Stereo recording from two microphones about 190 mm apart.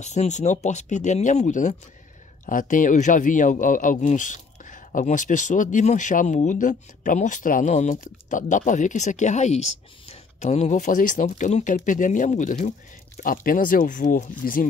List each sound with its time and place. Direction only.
0.0 s speech: 40° left (ahead or behind)